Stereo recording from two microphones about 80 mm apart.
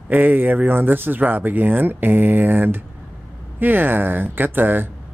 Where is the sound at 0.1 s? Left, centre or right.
Right.